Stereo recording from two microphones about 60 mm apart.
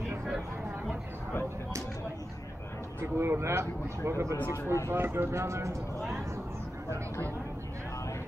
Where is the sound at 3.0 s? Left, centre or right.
Right.